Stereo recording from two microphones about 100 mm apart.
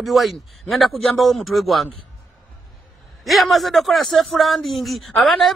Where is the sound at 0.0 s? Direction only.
Centre (ahead or behind).